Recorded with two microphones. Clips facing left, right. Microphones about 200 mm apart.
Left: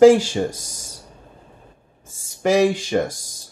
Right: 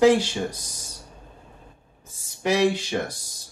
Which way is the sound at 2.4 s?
45° left (ahead or behind).